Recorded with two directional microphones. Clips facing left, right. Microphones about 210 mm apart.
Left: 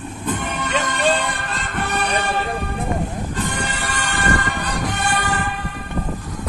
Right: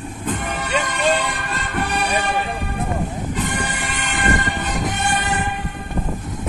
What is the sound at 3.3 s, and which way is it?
Music, 20° right (ahead or behind).